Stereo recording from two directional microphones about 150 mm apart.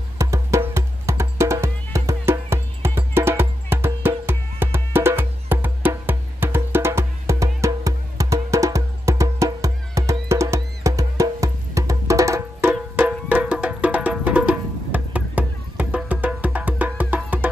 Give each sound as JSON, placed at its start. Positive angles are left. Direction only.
{"t": 0.2, "sound": "music", "side_deg": -20}